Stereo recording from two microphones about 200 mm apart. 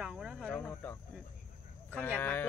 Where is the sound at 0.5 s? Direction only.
10° left (ahead or behind).